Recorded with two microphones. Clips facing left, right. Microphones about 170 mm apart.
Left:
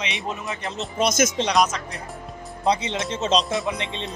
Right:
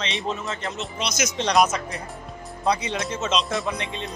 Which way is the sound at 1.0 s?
50° left (ahead or behind).